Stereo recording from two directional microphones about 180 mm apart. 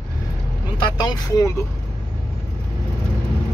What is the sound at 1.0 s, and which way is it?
Speech, 20° left (ahead or behind).